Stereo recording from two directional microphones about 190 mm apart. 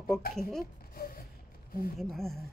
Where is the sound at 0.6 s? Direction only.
50° left (ahead or behind).